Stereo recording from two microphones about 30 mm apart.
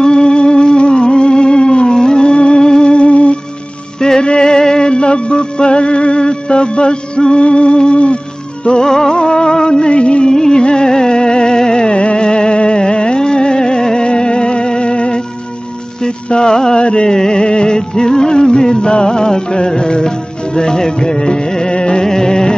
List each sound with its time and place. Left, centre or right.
0.0 s music: left
2.6 s music: left
2.9 s music: left
4.2 s music: left
8.7 s music: centre; by 10.3 s left
10.3 s music: left
16.8 s music: left
17.1 s music: left
22.0 s music: centre